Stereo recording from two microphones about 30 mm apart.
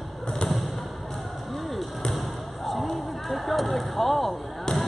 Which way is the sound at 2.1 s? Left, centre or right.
Centre.